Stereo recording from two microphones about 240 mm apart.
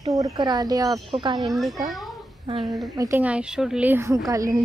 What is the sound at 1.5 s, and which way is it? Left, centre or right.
A child's voice, centre.